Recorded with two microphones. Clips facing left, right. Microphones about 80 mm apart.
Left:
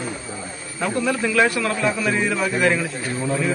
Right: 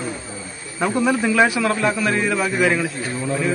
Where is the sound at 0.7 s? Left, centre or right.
Centre.